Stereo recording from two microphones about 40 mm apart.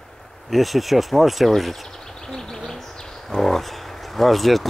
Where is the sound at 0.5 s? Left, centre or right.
Centre.